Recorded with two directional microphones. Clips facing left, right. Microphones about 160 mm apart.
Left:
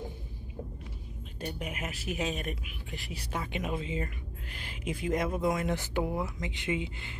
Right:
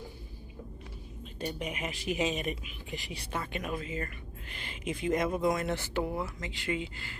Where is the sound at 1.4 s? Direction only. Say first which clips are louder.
Right 2 dB; 5° left (ahead or behind); by 4.0 s 25° left (ahead or behind).